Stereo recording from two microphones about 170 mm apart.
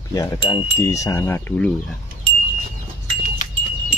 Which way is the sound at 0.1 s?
25° left (ahead or behind).